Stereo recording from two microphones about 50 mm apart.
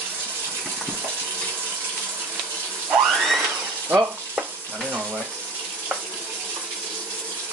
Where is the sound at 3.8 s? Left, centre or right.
Right.